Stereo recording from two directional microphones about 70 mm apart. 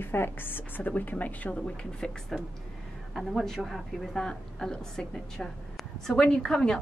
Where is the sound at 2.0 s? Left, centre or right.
Centre.